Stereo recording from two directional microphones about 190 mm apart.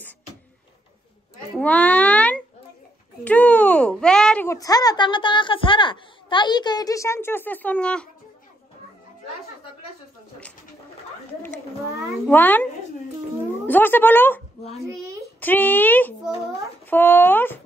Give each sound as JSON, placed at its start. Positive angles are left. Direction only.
{"t": 1.6, "sound": "a sound", "side_deg": 5}
{"t": 4.5, "sound": "a woman's voice", "side_deg": 20}
{"t": 12.3, "sound": "a woman's voice", "side_deg": 10}
{"t": 13.7, "sound": "a woman's voice", "side_deg": 10}
{"t": 15.4, "sound": "a woman's voice", "side_deg": 10}